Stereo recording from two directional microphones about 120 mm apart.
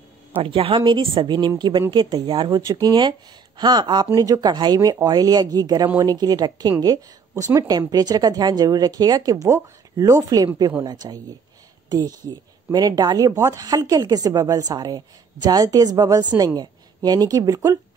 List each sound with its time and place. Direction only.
0.4 s a woman's voice: 50° right (ahead or behind)
12.7 s speech: 35° right (ahead or behind)